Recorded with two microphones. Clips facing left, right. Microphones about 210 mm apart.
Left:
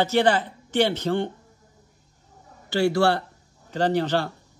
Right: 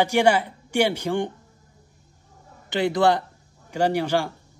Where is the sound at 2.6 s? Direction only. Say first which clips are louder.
Even; 20° right (ahead or behind).